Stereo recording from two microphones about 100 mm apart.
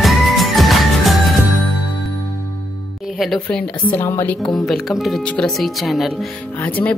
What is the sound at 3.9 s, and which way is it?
Speech, 25° left (ahead or behind).